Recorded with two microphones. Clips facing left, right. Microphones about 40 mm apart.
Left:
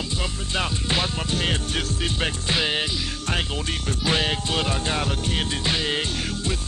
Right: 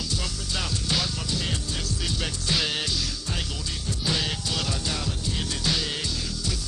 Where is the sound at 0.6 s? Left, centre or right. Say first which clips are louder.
Left 4 dB; left.